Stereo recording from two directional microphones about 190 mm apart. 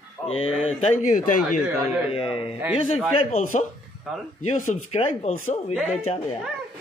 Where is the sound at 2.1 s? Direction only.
30° left (ahead or behind).